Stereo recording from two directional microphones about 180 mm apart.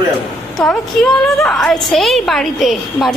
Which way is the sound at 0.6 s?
Centre (ahead or behind).